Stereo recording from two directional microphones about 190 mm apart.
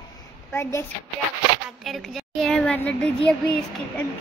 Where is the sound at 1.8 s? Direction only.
Centre (ahead or behind).